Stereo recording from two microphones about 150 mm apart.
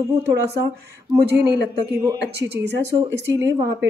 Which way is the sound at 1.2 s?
90° right.